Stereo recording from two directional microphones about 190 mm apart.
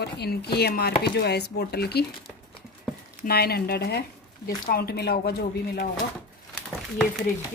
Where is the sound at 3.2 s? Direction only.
55° left (ahead or behind).